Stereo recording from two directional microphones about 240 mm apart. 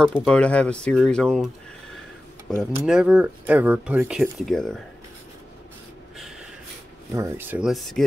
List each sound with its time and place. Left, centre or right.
0.0 s speech: centre
2.5 s speech: centre
7.2 s speech: centre